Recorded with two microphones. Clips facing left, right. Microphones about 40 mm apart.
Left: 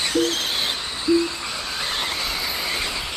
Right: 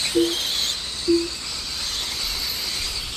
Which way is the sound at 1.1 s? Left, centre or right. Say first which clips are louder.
Left 1 dB; left.